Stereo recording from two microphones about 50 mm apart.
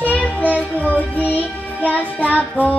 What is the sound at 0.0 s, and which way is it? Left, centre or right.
Music, left.